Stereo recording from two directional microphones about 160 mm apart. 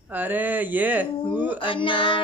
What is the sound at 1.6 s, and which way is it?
Child singing, 30° left (ahead or behind).